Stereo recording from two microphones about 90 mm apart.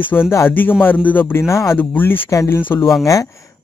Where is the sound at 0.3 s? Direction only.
25° left (ahead or behind).